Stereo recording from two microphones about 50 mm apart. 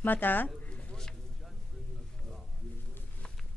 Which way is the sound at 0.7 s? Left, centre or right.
Centre.